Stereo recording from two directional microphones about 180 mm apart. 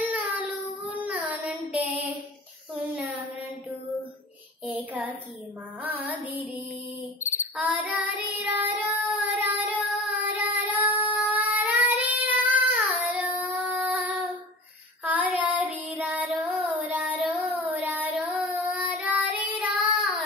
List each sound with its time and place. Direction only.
0.8 s child singing: 10° right (ahead or behind)
2.7 s a sound: 10° right (ahead or behind)
4.6 s child singing: 10° right (ahead or behind)
7.5 s child singing: 10° right (ahead or behind)